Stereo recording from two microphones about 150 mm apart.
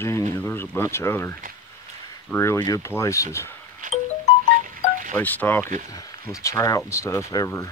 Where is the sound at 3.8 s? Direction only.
60° right (ahead or behind).